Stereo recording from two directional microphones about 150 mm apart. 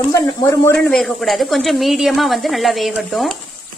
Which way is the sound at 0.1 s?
20° left (ahead or behind).